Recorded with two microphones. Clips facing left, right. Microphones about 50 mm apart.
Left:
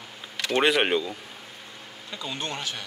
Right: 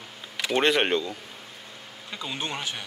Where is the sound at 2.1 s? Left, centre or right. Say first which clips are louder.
Even; centre.